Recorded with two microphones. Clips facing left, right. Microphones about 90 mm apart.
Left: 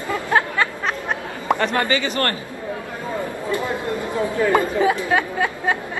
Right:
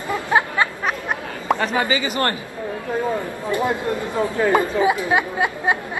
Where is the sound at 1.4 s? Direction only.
Centre (ahead or behind).